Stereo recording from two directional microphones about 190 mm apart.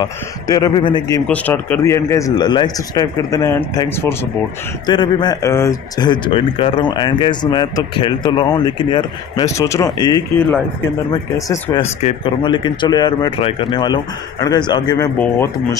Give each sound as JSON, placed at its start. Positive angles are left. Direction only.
{"t": 0.0, "sound": "speech", "side_deg": 20}
{"t": 1.2, "sound": "a man's voice", "side_deg": 10}
{"t": 12.0, "sound": "a man's voice", "side_deg": 30}